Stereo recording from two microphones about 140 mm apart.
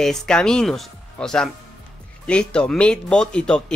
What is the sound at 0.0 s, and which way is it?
Speech, 5° left (ahead or behind).